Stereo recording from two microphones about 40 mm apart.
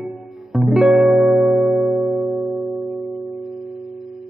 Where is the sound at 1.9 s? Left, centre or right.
Right.